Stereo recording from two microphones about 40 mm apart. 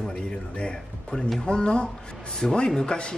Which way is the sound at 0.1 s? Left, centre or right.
Left.